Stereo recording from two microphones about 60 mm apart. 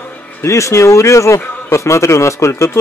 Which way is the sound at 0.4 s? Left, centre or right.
Left.